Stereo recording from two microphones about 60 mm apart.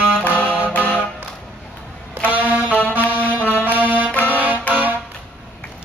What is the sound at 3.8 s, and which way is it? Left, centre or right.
Music, right.